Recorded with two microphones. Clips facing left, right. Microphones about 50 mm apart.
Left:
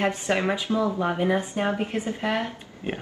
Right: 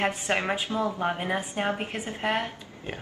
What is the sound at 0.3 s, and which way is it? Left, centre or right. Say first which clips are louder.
Speech: left 3 dB; right.